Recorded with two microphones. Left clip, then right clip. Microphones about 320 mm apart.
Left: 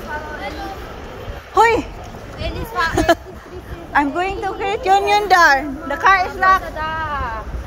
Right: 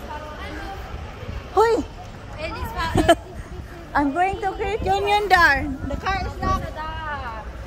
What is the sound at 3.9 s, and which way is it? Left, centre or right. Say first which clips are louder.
A woman's voice: left 3 dB; centre.